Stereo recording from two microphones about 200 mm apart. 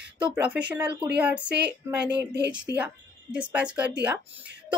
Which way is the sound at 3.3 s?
5° right (ahead or behind).